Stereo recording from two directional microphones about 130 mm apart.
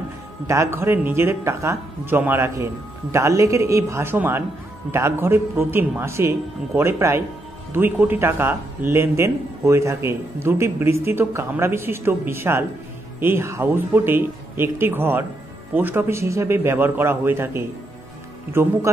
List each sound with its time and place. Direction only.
0.5 s a man's voice: 20° right (ahead or behind)